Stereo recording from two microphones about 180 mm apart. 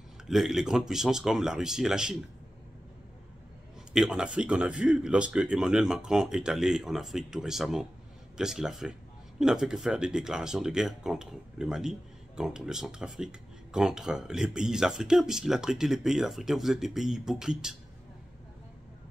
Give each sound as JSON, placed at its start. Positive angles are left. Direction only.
{"t": 0.3, "sound": "speech", "side_deg": 0}
{"t": 3.9, "sound": "speech", "side_deg": -5}